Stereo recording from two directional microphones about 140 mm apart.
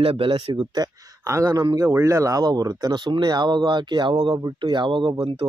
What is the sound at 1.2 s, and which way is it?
Speech, 20° right (ahead or behind).